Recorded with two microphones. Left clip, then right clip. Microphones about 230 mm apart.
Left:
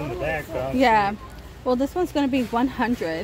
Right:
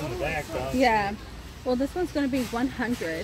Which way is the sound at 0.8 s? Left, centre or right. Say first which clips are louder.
Left 5 dB; centre.